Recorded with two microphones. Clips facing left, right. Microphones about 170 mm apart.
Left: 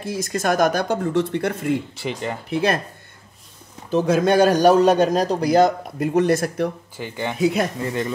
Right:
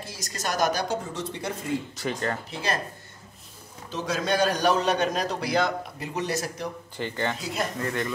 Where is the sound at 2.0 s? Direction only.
15° left (ahead or behind).